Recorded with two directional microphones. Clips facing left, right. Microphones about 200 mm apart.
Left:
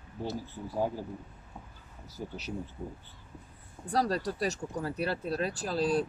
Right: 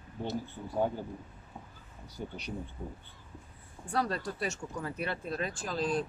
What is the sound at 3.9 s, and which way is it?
Speech, 35° left (ahead or behind).